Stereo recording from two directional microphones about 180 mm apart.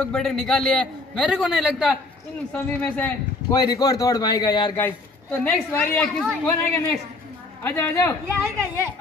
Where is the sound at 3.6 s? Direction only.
20° left (ahead or behind).